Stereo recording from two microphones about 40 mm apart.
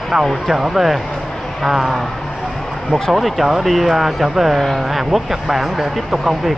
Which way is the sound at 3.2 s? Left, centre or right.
Centre.